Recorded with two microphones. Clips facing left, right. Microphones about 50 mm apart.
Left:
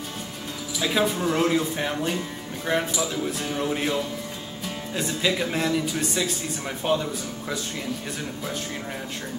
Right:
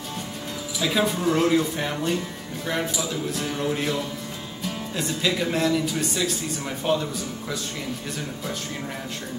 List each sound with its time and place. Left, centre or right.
0.7 s speech: centre